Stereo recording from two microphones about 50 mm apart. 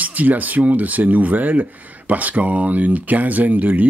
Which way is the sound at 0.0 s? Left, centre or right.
Right.